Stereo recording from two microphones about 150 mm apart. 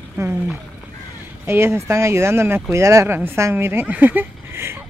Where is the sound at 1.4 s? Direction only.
15° right (ahead or behind).